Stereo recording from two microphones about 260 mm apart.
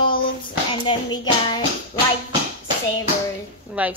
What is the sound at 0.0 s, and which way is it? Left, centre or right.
Hands, centre.